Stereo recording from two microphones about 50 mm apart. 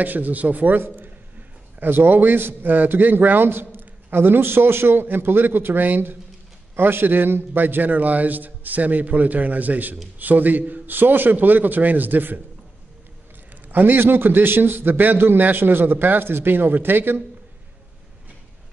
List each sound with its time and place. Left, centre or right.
0.0 s a man's voice: right
13.7 s a man's voice: right